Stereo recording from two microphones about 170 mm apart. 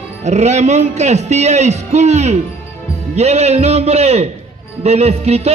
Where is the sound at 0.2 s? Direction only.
40° right (ahead or behind).